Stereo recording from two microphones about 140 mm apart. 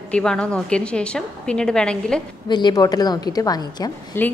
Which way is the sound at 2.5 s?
30° left (ahead or behind).